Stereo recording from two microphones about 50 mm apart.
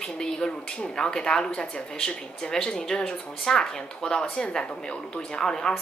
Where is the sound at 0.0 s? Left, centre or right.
Centre.